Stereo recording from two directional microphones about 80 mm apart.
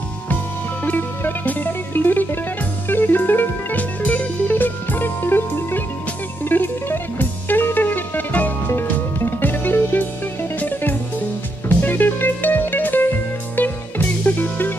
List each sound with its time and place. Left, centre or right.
0.8 s music: left